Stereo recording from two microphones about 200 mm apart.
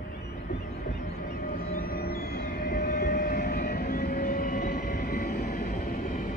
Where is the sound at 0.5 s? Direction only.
50° left (ahead or behind).